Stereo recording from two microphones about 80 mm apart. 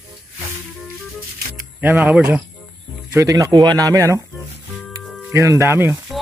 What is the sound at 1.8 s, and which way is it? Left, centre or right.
Speech, centre.